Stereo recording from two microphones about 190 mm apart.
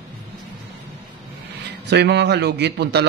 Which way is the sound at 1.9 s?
60° right (ahead or behind).